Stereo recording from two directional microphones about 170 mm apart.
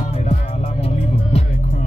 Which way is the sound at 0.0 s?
40° left (ahead or behind).